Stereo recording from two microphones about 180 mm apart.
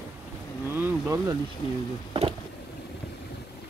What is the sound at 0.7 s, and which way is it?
Vehicle, 15° right (ahead or behind).